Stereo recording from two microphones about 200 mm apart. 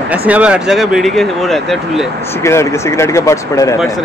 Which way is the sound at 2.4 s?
15° left (ahead or behind).